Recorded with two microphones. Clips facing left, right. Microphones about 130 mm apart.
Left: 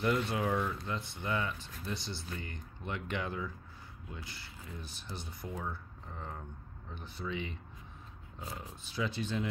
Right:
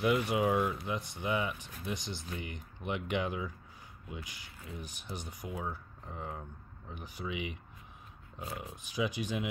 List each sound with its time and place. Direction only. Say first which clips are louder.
0.0 s speech: right 3 dB; 10° right (ahead or behind)